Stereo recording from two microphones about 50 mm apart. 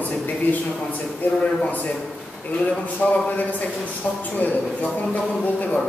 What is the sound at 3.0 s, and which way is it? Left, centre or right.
Speech, left.